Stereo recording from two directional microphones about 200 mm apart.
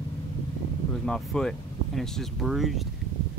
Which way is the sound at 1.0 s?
5° left (ahead or behind).